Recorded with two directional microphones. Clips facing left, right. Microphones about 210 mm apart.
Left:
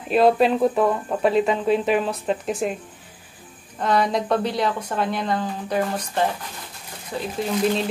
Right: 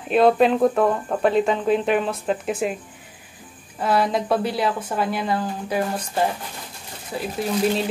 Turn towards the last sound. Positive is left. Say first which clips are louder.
# even
turn(degrees=-5)  # may be behind; listen again after turning